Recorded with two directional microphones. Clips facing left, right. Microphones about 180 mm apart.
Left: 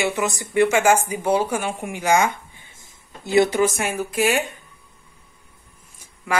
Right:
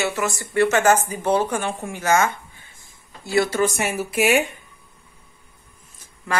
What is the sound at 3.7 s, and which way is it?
Speech, 5° right (ahead or behind).